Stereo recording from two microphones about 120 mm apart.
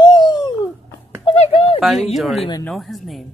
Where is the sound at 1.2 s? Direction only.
60° left (ahead or behind).